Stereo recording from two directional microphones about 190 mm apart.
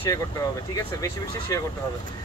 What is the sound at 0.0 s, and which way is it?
Speech, 15° left (ahead or behind).